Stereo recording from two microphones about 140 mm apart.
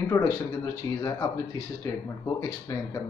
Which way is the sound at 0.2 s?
25° left (ahead or behind).